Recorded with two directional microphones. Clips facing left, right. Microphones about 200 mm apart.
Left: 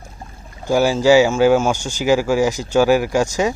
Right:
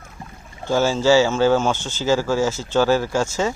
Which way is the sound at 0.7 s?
10° left (ahead or behind).